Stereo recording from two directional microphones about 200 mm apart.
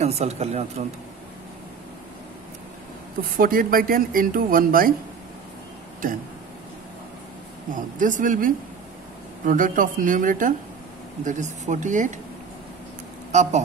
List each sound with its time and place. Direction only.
0.0 s speech: 35° right (ahead or behind)
3.2 s speech: 45° right (ahead or behind)
7.7 s speech: 40° right (ahead or behind)
13.3 s speech: 35° right (ahead or behind)